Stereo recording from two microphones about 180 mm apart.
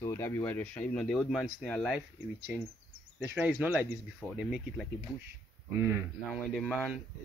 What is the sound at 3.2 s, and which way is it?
Speech, 10° right (ahead or behind).